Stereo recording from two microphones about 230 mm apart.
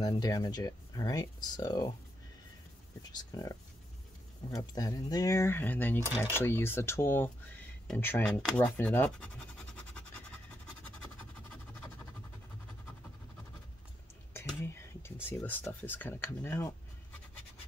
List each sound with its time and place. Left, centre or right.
0.0 s speech: centre
3.1 s speech: centre
4.6 s speech: centre
6.0 s speech: centre
6.3 s speech: centre
14.3 s speech: centre